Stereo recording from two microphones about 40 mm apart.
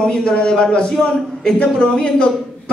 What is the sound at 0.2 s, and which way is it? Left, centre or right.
A woman's voice, left.